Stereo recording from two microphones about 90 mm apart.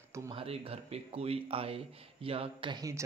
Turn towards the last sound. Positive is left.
turn(degrees=-40)  # may be behind; listen again after turning